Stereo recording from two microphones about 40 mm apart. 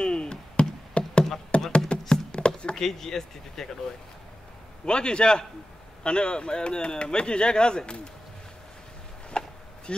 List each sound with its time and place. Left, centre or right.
0.0 s knock: left
1.5 s a sound: left
2.7 s speech: centre
4.8 s speech: left
9.3 s chop: left